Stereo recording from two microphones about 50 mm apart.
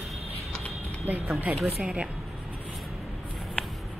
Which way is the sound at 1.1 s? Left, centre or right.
Right.